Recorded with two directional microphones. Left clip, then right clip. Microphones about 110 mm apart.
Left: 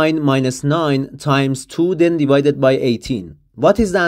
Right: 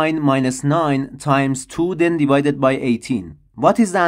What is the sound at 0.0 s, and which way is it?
Speech, 25° left (ahead or behind).